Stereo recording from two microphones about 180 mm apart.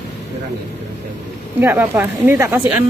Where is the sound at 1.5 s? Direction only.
10° right (ahead or behind).